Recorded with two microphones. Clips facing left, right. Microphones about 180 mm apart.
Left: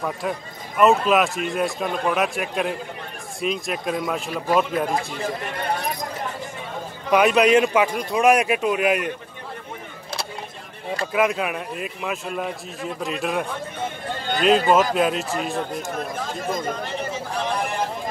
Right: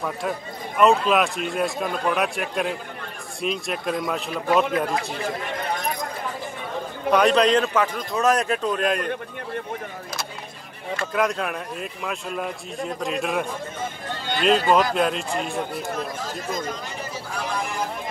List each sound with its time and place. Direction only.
0.7 s a man's voice: centre (ahead or behind)
5.8 s a sound: 35° left (ahead or behind)
7.1 s a man's voice: 5° left (ahead or behind)
11.1 s a man's voice: 5° left (ahead or behind)
16.3 s speech: 55° left (ahead or behind)